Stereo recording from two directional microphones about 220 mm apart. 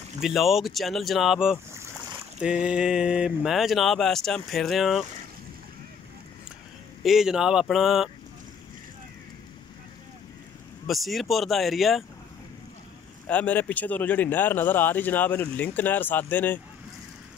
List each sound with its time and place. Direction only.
0.2 s speech: centre (ahead or behind)
7.0 s speech: centre (ahead or behind)
10.9 s speech: centre (ahead or behind)
13.3 s speech: 5° left (ahead or behind)